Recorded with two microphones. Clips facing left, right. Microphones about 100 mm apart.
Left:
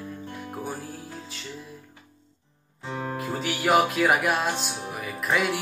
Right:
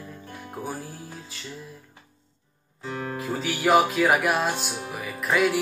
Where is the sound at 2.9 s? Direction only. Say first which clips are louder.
Even; 20° left (ahead or behind).